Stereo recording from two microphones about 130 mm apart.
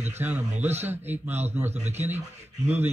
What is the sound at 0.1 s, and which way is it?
Speech, 15° right (ahead or behind).